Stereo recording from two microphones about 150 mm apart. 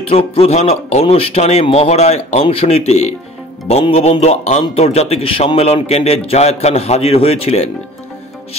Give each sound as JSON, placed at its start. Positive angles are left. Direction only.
{"t": 0.1, "sound": "a man's voice", "side_deg": 40}